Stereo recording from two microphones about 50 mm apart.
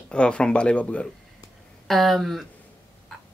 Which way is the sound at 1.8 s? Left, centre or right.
Centre.